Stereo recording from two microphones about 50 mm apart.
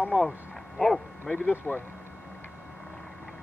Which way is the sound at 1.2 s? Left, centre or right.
Left.